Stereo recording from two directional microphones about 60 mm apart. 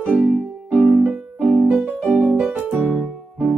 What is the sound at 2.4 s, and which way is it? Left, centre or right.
Music, right.